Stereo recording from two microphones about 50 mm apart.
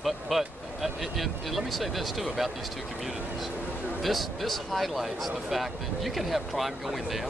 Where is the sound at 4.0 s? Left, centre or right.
Centre.